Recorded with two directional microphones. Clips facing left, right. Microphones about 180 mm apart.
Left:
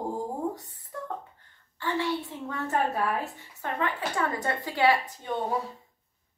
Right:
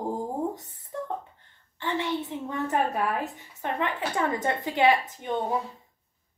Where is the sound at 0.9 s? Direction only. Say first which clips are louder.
Right 4 dB; 20° right (ahead or behind).